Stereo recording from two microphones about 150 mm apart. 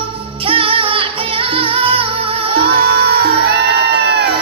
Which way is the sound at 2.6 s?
90° right.